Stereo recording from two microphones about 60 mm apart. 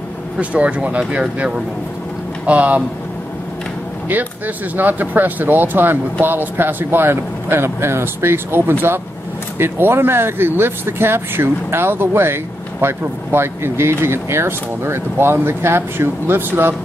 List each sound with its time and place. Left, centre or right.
0.4 s speech: centre
4.7 s speech: right